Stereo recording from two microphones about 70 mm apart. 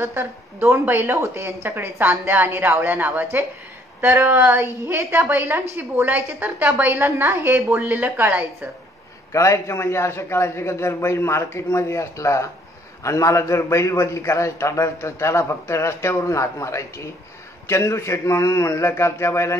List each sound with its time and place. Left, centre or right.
0.0 s a woman's voice: right
9.3 s a man's voice: left